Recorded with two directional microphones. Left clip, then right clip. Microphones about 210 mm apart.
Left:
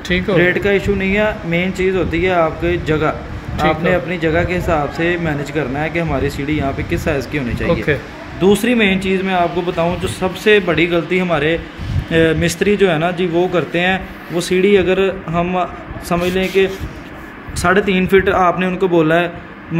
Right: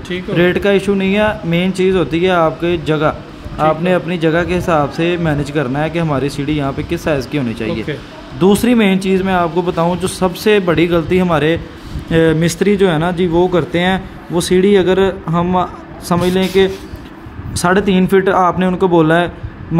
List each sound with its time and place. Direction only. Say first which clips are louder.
0.4 s speech: right 4 dB; 65° right (ahead or behind)